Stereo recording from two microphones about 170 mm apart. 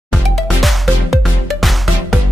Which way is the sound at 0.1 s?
Centre (ahead or behind).